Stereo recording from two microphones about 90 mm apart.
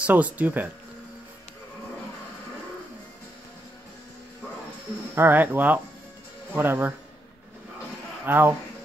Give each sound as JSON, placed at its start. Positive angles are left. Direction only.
{"t": 0.0, "sound": "speech", "side_deg": -15}
{"t": 5.1, "sound": "speech", "side_deg": -25}
{"t": 8.3, "sound": "speech", "side_deg": -20}